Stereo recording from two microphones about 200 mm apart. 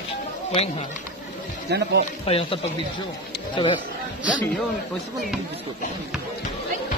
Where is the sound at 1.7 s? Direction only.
55° right (ahead or behind).